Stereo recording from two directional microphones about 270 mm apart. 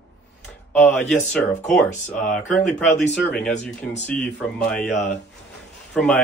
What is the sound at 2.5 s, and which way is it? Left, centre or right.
Speech, left.